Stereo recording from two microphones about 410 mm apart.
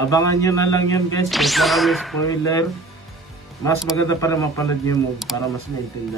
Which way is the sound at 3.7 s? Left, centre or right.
Centre.